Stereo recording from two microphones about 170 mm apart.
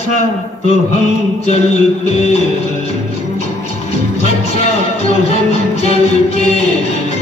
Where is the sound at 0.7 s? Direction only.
40° left (ahead or behind).